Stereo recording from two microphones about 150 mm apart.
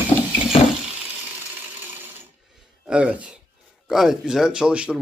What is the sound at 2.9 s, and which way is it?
A man's voice, 10° right (ahead or behind).